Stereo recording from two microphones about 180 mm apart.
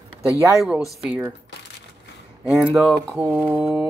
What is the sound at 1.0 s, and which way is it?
Speech, 5° right (ahead or behind).